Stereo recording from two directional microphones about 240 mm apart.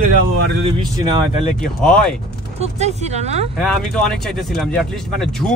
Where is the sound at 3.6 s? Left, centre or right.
Centre.